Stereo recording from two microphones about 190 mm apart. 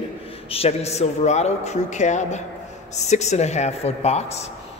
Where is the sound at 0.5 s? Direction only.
30° left (ahead or behind).